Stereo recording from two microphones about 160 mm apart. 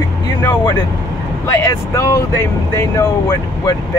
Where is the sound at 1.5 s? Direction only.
15° left (ahead or behind).